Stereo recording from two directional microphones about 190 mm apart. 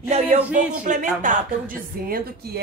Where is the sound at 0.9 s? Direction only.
40° right (ahead or behind).